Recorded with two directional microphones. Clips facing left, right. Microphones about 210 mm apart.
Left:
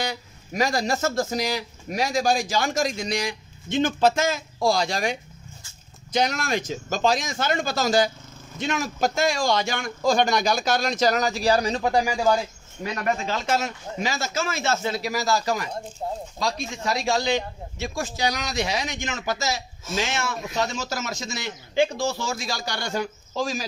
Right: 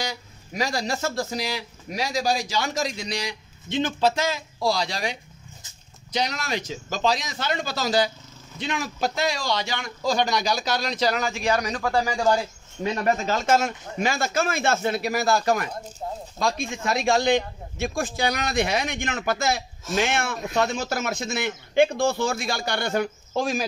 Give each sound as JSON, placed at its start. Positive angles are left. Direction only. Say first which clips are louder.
{"t": 0.0, "sound": "speech", "louder": "left 2 dB", "side_deg": 50}
{"t": 6.1, "sound": "speech", "louder": "left 3 dB", "side_deg": 50}
{"t": 12.8, "sound": "a man's voice", "louder": "right 3 dB", "side_deg": -30}
{"t": 16.0, "sound": "speech", "louder": "left 2 dB", "side_deg": 30}
{"t": 16.3, "sound": "a man's voice", "louder": "right 5 dB", "side_deg": -55}